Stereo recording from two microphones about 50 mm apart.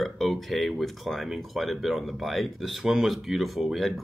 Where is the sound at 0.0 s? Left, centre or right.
Centre.